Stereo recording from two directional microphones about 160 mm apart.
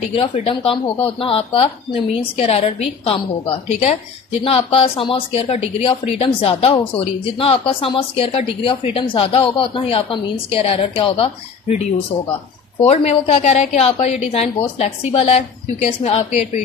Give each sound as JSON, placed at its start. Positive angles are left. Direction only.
{"t": 0.1, "sound": "speech", "side_deg": 35}
{"t": 12.8, "sound": "a woman's voice", "side_deg": 40}